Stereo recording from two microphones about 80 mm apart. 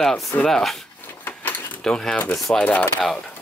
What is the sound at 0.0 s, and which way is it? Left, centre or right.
Speech, centre.